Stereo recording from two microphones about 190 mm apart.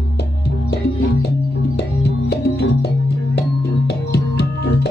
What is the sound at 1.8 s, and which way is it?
Music, 60° left (ahead or behind).